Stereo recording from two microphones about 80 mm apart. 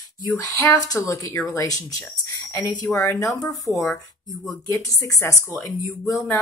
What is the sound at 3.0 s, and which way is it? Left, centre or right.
Speech, left.